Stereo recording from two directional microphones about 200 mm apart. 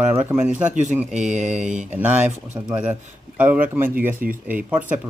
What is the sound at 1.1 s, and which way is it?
Speech, 35° right (ahead or behind).